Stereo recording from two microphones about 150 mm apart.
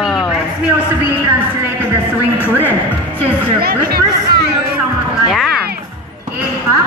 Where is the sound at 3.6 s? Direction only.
90° right.